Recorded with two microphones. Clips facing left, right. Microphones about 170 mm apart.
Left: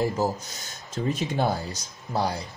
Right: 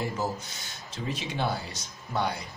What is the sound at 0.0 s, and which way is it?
Speech, 40° left (ahead or behind).